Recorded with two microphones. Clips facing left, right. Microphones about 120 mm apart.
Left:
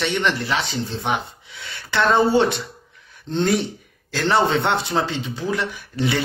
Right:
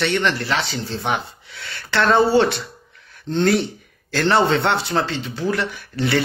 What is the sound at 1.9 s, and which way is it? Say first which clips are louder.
Speech: right 1 dB; 15° left (ahead or behind).